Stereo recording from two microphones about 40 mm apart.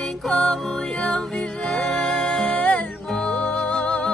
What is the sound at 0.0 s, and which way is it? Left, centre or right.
Music, centre.